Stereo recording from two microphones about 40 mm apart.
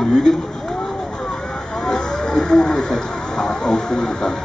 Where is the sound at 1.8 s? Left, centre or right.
Centre.